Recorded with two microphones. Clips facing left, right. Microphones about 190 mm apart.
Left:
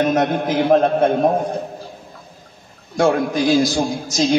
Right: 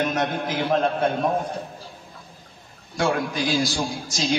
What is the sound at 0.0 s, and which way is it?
A man's voice, 45° left (ahead or behind).